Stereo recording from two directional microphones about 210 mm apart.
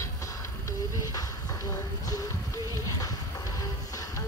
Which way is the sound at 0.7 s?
15° left (ahead or behind).